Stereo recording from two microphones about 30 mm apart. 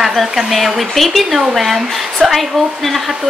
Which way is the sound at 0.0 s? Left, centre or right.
Centre.